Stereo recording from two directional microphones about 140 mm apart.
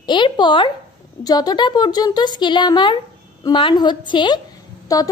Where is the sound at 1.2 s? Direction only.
30° left (ahead or behind).